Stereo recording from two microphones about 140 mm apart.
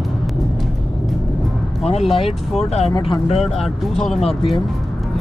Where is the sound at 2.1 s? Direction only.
45° left (ahead or behind).